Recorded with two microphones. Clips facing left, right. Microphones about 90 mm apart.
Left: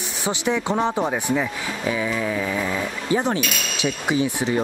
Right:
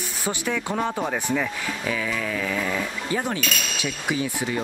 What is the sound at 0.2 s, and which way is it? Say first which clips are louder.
Speech: left 4 dB; 20° left (ahead or behind).